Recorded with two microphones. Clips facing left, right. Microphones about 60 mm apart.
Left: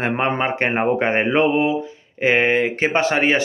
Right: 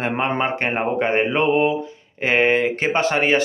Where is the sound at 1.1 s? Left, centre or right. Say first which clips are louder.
Left 1 dB; centre.